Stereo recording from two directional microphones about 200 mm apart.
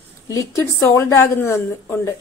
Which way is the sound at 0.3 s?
15° left (ahead or behind).